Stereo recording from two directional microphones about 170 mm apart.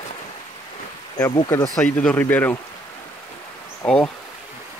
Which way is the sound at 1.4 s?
20° left (ahead or behind).